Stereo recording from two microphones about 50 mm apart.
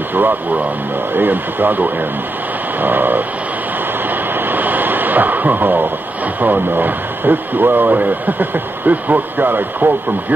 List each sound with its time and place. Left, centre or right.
1.1 s speech: right
4.5 s vehicle: right
6.4 s speech: right